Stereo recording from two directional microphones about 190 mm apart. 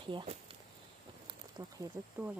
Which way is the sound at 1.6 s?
20° right (ahead or behind).